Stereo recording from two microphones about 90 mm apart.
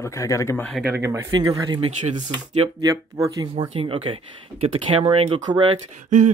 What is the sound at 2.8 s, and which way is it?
Speech, 40° right (ahead or behind).